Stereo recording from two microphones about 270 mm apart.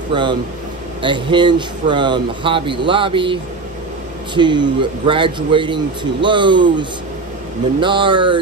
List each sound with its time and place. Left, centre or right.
0.1 s a man's voice: centre
4.4 s a man's voice: centre